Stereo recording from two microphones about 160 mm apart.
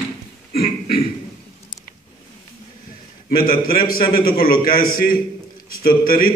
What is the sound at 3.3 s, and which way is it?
A man's voice, 65° left (ahead or behind).